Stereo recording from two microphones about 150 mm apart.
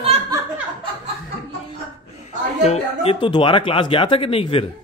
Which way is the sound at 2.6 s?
45° left (ahead or behind).